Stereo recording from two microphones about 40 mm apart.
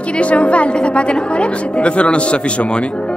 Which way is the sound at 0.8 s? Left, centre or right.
Left.